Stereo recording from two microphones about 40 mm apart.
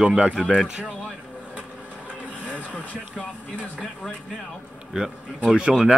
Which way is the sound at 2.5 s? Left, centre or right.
Left.